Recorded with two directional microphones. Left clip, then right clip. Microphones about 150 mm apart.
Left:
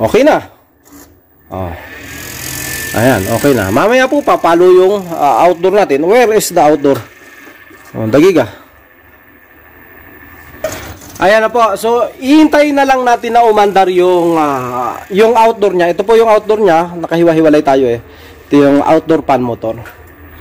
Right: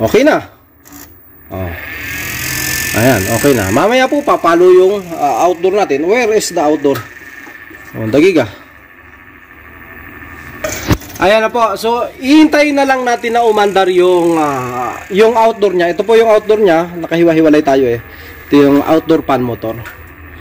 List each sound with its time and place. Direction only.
0.0 s speech: 5° left (ahead or behind)
2.9 s ratchet: 5° left (ahead or behind)
3.3 s a man's voice: 15° left (ahead or behind)
5.3 s speech: 40° left (ahead or behind)
7.9 s speech: 30° left (ahead or behind)
11.1 s a man's voice: 10° left (ahead or behind)